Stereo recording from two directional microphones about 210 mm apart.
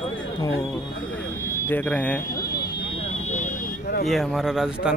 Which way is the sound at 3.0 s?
35° left (ahead or behind).